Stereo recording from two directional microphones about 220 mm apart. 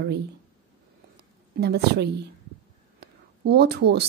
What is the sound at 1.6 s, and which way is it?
Speech, 45° right (ahead or behind).